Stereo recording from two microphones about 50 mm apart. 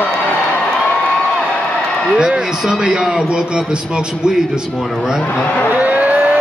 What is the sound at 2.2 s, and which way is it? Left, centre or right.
A man's voice, centre.